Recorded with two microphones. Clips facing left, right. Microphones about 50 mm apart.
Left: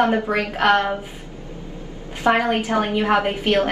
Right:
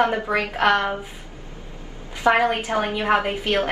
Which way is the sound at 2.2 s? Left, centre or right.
Right.